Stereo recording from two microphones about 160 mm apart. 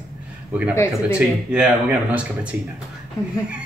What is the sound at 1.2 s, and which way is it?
Speech, 5° right (ahead or behind).